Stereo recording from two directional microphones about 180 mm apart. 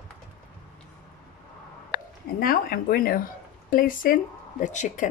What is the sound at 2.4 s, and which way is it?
Speech, 55° left (ahead or behind).